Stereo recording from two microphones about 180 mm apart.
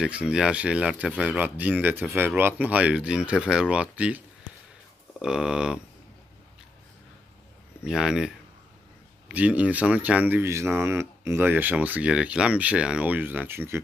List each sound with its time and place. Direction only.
0.0 s speech: 5° right (ahead or behind)
5.2 s speech: 5° right (ahead or behind)
7.8 s speech: 5° right (ahead or behind)
9.3 s speech: 10° right (ahead or behind)